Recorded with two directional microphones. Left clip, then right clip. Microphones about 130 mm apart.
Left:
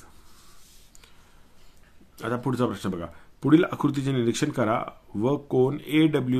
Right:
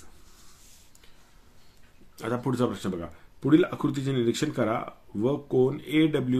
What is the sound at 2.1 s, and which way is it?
Speech, 25° left (ahead or behind).